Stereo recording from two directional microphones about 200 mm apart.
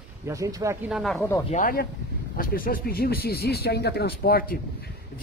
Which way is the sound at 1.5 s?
40° left (ahead or behind).